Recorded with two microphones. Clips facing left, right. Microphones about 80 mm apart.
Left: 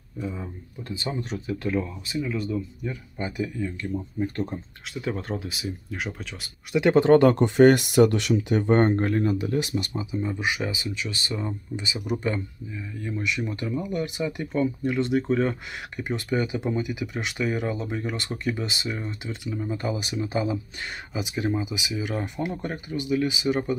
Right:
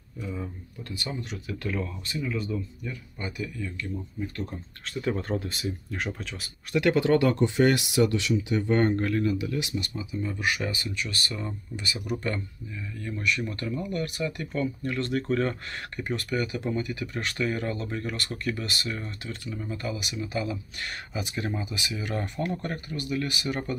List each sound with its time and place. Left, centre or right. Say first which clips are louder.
0.2 s speech: left 2 dB; left
2.8 s speech: left 4 dB; left
4.8 s speech: right 2 dB; centre
7.0 s speech: left 8 dB; left
21.1 s speech: left 6 dB; centre